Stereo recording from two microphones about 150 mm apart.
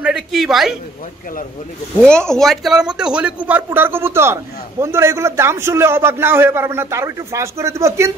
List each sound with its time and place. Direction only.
0.0 s a woman's voice: 5° right (ahead or behind)
2.0 s a man's voice: 5° left (ahead or behind); by 8.1 s 20° right (ahead or behind)